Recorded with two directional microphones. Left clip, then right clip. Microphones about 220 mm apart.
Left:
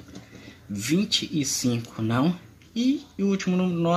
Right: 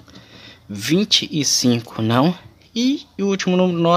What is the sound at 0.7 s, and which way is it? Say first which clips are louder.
Speech: right 7 dB; 30° right (ahead or behind).